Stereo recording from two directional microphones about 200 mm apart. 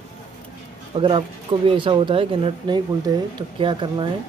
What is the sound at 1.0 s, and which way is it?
Speech, 25° right (ahead or behind).